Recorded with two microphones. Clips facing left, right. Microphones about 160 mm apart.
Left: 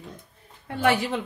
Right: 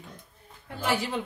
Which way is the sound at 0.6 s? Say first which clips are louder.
Left 6 dB; 65° left (ahead or behind).